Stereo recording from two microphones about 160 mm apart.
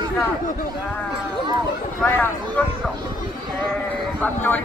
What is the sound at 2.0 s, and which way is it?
Speech, 15° left (ahead or behind).